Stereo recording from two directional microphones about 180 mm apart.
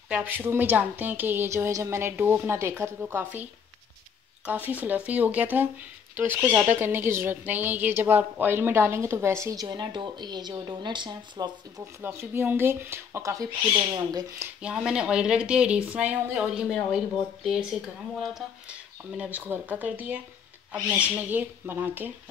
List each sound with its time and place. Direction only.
0.1 s speech: 10° right (ahead or behind)
4.5 s speech: 10° right (ahead or behind); by 11.5 s 25° right (ahead or behind)
12.0 s speech: 15° right (ahead or behind)
14.6 s speech: 5° right (ahead or behind)